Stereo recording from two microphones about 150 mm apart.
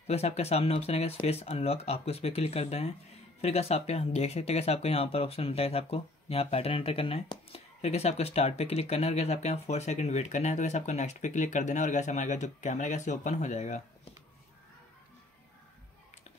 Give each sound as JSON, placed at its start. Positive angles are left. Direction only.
{"t": 0.0, "sound": "speech", "side_deg": 45}